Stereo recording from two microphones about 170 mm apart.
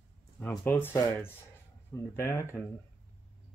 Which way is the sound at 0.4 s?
10° left (ahead or behind).